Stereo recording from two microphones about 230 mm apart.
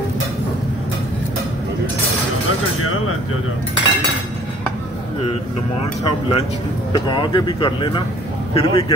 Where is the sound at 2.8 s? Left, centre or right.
Left.